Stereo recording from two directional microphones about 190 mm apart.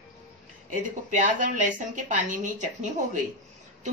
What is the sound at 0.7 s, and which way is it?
A woman's voice, 40° right (ahead or behind).